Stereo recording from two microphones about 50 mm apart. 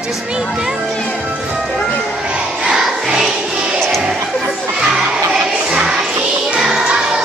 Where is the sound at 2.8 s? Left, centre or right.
Centre.